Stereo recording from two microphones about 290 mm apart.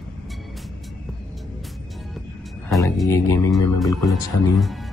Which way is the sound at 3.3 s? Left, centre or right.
Centre.